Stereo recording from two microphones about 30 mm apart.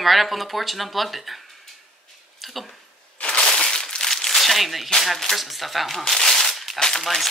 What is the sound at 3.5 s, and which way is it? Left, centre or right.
Crushing, left.